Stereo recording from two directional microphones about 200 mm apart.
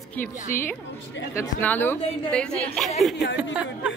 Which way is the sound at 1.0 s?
70° left (ahead or behind).